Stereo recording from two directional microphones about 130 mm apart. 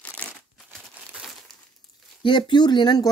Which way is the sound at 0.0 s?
10° left (ahead or behind).